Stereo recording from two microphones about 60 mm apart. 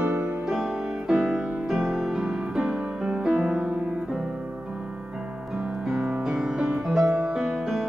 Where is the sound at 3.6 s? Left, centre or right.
Right.